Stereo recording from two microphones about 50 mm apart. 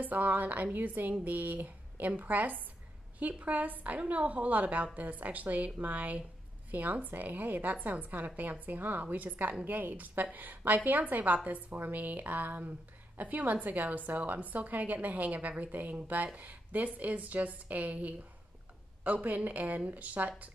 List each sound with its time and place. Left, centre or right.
0.0 s a woman's voice: right
19.2 s a woman's voice: right